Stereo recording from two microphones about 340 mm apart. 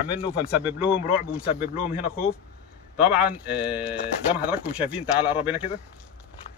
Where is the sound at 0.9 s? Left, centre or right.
Centre.